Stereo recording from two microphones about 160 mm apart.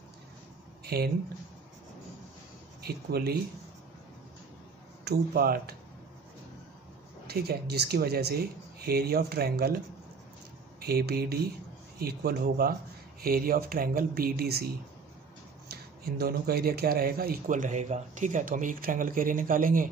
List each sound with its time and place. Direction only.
0.8 s speech: 75° right (ahead or behind)
2.8 s speech: 75° right (ahead or behind)
5.0 s speech: 75° right (ahead or behind)
7.2 s speech: 80° right
10.8 s speech: 75° right (ahead or behind)
15.7 s speech: 75° right (ahead or behind); by 19.9 s 60° right (ahead or behind)